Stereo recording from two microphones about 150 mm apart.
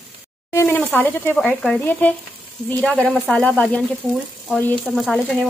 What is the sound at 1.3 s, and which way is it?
Speech, 5° left (ahead or behind).